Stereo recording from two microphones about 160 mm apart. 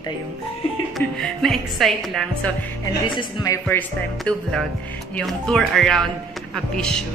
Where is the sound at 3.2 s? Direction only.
25° left (ahead or behind).